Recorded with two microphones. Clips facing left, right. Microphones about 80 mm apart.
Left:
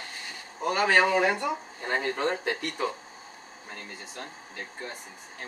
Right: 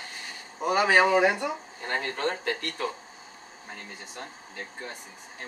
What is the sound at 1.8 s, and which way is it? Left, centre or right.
Speech, centre.